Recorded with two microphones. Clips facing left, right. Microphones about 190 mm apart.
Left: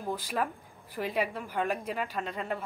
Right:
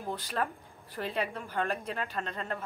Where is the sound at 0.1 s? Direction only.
10° left (ahead or behind).